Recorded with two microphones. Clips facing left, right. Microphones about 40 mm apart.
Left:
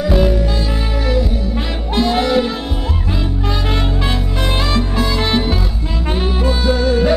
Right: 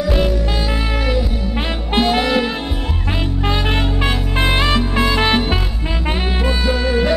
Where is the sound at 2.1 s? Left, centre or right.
Centre.